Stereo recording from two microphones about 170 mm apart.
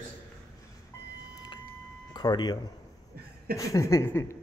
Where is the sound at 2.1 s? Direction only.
25° left (ahead or behind).